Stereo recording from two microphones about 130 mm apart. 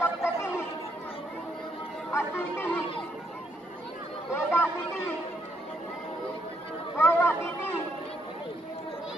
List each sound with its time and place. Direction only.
0.0 s chatter: 20° left (ahead or behind)
2.1 s speech: 15° left (ahead or behind)
4.3 s speech: 15° left (ahead or behind)
7.0 s a sound: 15° left (ahead or behind)